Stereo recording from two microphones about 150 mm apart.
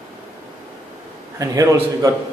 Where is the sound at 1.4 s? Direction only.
25° right (ahead or behind).